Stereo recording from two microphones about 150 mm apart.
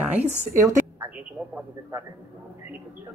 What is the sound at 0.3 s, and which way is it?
Speech, 50° right (ahead or behind).